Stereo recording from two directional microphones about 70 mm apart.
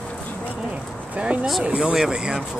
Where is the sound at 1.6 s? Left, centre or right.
Centre.